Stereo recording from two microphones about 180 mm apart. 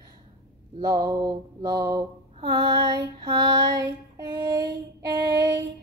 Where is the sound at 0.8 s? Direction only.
25° right (ahead or behind).